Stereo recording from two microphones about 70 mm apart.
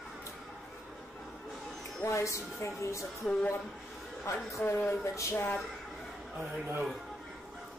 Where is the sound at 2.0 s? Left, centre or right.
Left.